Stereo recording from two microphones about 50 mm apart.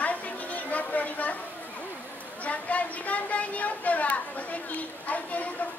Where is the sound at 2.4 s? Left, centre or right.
Left.